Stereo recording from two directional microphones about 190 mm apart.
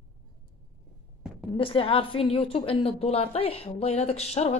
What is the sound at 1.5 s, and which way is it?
A woman's voice, 30° left (ahead or behind).